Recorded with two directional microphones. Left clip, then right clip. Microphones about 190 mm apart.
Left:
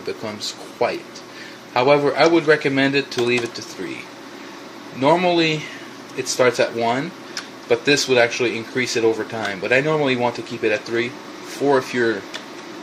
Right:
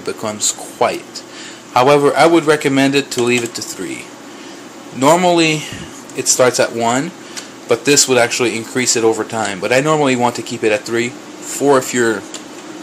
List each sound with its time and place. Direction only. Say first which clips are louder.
1.7 s speech: right 5 dB; 20° right (ahead or behind)
5.0 s speech: right 5 dB; 15° right (ahead or behind)